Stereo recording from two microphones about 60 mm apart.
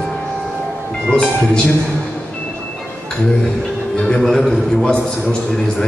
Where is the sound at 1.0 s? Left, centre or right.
Centre.